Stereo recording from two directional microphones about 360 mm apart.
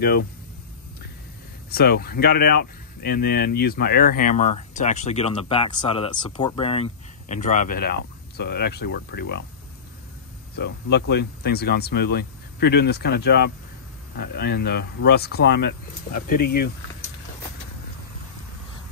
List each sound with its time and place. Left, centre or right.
1.7 s speech: left
10.5 s speech: left